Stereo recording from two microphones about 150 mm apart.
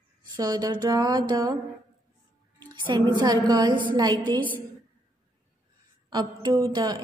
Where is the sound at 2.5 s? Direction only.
30° right (ahead or behind).